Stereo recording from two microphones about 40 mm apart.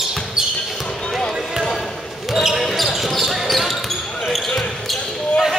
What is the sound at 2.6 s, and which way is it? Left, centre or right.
Basketball bounce, centre.